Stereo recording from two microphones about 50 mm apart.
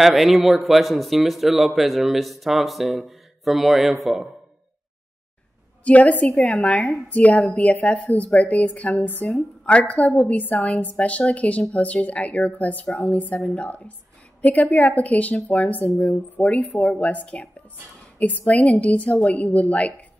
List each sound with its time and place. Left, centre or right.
0.0 s speech: centre
5.9 s a woman's voice: left